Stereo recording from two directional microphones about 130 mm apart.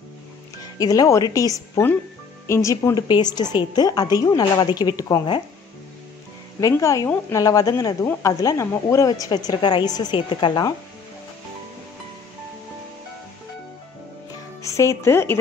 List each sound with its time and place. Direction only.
0.7 s a woman's voice: 30° left (ahead or behind)
6.6 s speech: 25° left (ahead or behind)
14.6 s speech: 25° left (ahead or behind)